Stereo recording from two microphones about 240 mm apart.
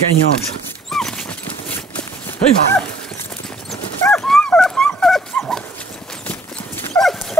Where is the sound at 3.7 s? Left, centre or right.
Centre.